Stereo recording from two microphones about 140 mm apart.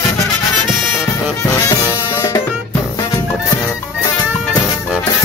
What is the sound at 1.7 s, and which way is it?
Music, 20° left (ahead or behind).